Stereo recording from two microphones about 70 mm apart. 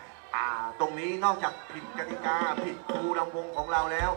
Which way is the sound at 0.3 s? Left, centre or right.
Centre.